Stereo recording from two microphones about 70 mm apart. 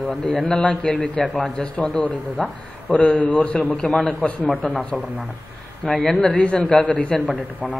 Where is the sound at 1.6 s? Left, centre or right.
Centre.